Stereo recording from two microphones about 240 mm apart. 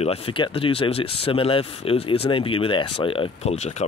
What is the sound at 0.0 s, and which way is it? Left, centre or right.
Speech, left.